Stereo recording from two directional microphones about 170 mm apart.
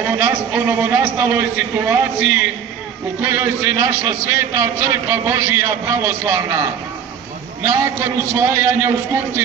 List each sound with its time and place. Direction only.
0.0 s a man's voice: 10° right (ahead or behind)